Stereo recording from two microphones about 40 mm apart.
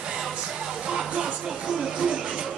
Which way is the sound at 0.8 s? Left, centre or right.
Right.